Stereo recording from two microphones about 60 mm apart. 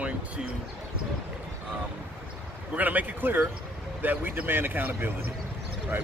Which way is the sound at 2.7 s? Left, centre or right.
Right.